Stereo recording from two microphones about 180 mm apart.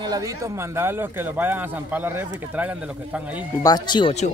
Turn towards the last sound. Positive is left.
turn(degrees=25)  # may be behind; listen again after turning